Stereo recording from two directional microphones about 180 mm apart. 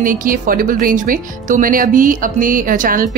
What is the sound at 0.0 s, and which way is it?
Speech, 50° right (ahead or behind).